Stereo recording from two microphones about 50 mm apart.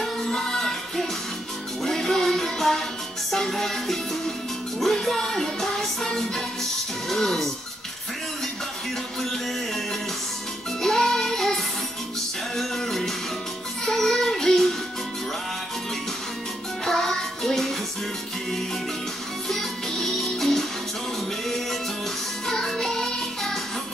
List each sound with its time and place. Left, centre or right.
0.0 s music: centre
10.8 s music: centre
12.5 s music: centre
13.8 s child singing: centre
16.8 s music: centre
19.5 s music: centre
22.5 s music: centre